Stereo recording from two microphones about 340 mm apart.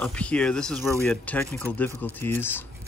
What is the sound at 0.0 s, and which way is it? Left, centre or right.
Speech, centre.